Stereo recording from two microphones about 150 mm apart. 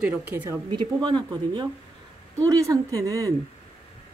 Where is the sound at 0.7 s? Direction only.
30° right (ahead or behind).